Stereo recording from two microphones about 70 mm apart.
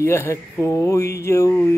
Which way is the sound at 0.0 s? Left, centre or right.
Left.